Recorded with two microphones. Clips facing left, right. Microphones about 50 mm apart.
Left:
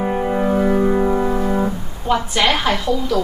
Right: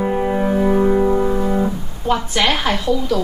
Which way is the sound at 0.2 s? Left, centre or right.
Centre.